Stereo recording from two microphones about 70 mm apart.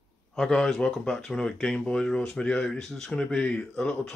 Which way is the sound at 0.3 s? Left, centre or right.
Centre.